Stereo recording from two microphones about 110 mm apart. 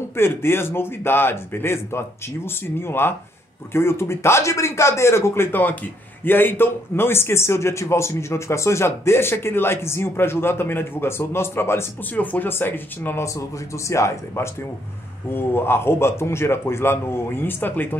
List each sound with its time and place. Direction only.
0.1 s speech: 20° left (ahead or behind)